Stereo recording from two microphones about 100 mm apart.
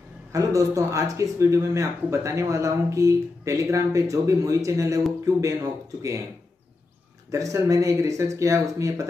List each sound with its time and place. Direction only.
0.3 s speech: 35° right (ahead or behind)
7.2 s speech: 35° right (ahead or behind)